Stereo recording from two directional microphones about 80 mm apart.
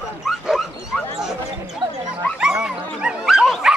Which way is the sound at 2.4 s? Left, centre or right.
Centre.